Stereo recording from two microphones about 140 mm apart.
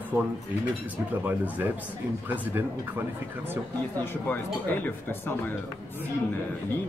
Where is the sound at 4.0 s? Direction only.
15° left (ahead or behind).